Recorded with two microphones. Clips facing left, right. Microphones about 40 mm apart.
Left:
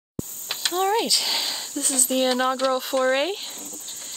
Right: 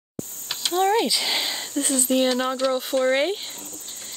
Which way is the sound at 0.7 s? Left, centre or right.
Centre.